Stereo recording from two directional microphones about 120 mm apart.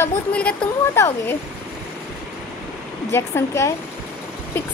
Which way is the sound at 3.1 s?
20° left (ahead or behind).